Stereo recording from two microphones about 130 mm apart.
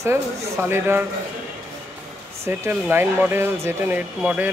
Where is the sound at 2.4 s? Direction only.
20° right (ahead or behind).